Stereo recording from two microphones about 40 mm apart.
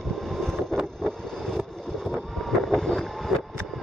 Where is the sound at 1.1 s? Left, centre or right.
Centre.